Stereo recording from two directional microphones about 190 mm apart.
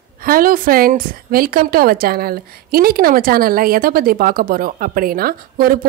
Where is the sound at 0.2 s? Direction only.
50° right (ahead or behind).